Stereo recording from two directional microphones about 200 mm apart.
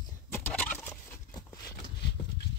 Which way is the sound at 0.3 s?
5° left (ahead or behind).